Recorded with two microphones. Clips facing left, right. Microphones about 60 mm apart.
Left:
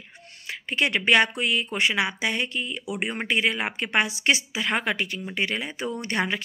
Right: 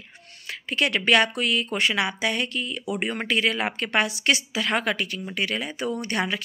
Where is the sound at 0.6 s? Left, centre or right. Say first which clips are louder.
Even; left.